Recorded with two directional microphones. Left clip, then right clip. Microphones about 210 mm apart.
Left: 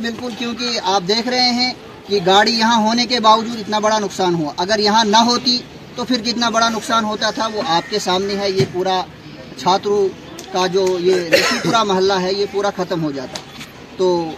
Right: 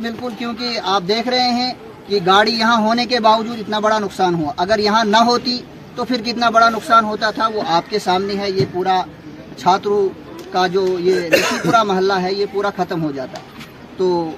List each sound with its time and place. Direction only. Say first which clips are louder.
0.0 s a man's voice: left 1 dB; 10° left (ahead or behind)
11.2 s speech: left 1 dB; 55° right (ahead or behind)
11.7 s a man's voice: right 2 dB; 5° left (ahead or behind)